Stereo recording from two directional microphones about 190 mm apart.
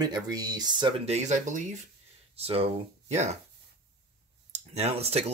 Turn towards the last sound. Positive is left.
turn(degrees=-35)  # may be behind; listen again after turning